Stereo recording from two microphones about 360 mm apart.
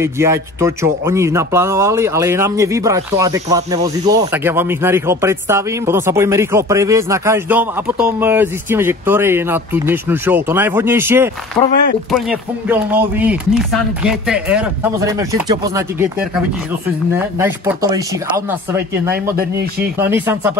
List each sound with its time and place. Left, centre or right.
0.0 s speech: centre
11.6 s speech: centre
12.1 s speech: centre
17.4 s speech: centre
19.3 s a man's voice: right
20.0 s speech: centre